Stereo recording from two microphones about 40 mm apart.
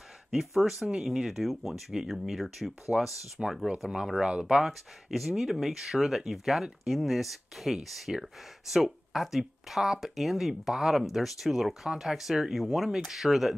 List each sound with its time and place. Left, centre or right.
0.3 s speech: centre
2.9 s speech: centre
3.4 s speech: centre
3.8 s speech: right
4.6 s speech: centre